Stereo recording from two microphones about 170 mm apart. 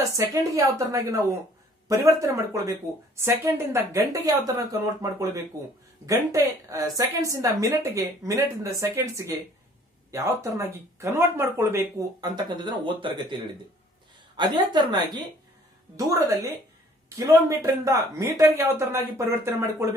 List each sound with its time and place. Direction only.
0.3 s speech: 20° right (ahead or behind)
17.2 s speech: 15° right (ahead or behind)